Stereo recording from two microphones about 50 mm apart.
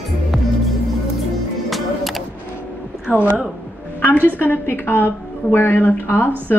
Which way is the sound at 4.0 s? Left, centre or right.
Left.